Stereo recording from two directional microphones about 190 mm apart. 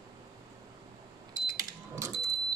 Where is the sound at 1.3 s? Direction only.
15° right (ahead or behind).